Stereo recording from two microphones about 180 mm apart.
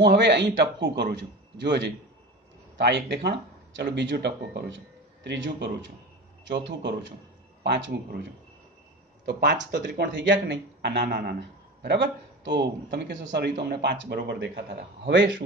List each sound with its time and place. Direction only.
0.0 s a man's voice: 70° right (ahead or behind)
7.6 s speech: 70° right (ahead or behind)
15.0 s a man's voice: 80° right